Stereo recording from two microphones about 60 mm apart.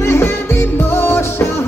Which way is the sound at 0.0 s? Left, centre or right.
Left.